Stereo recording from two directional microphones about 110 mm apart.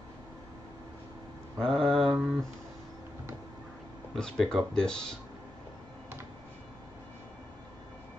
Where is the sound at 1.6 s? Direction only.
55° right (ahead or behind).